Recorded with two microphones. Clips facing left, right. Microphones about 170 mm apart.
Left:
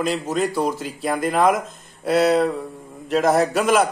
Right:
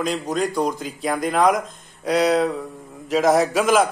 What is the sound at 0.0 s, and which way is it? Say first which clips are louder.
A man's voice: left 1 dB; 5° left (ahead or behind).